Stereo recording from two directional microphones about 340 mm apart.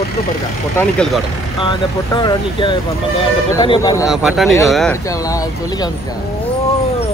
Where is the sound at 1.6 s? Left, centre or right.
Centre.